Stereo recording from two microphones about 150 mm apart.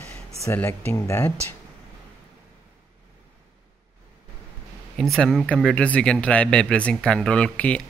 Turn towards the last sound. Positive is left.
turn(degrees=10)  # may be behind; listen again after turning